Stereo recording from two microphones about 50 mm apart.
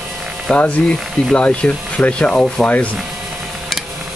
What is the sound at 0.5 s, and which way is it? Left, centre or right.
Rub, left.